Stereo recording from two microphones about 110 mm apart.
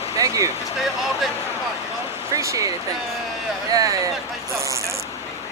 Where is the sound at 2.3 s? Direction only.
30° right (ahead or behind).